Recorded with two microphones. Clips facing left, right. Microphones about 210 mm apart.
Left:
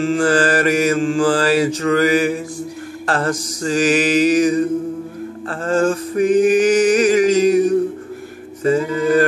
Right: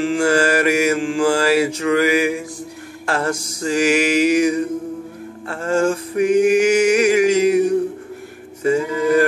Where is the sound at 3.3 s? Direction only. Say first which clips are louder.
Left 3 dB; 30° right (ahead or behind).